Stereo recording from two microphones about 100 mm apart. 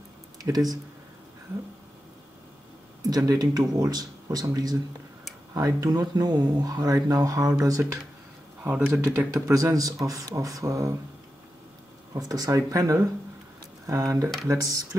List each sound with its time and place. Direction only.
0.4 s speech: 40° right (ahead or behind)
3.1 s speech: 35° right (ahead or behind)
8.6 s speech: 15° right (ahead or behind)
9.3 s speech: 35° right (ahead or behind)
12.1 s speech: 40° right (ahead or behind)